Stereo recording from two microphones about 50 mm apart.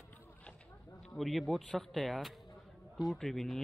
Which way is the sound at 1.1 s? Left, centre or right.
Centre.